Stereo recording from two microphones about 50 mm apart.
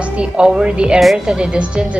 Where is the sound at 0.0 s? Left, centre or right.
Right.